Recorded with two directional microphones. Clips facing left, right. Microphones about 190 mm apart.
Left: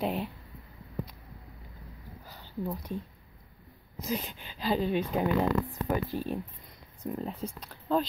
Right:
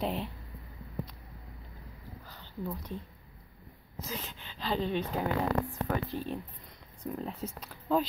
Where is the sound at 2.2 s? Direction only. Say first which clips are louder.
Left 3 dB; 10° left (ahead or behind).